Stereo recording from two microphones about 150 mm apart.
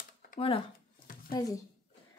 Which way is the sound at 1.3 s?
25° left (ahead or behind).